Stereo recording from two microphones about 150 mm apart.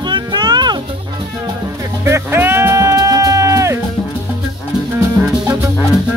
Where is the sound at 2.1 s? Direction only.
15° right (ahead or behind).